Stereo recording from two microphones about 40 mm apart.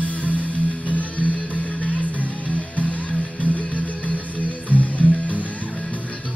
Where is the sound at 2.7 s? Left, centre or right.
Left.